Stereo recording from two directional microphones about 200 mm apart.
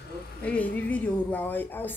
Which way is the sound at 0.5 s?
5° left (ahead or behind).